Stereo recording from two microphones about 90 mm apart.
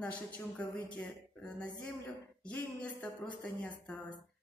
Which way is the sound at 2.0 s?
15° left (ahead or behind).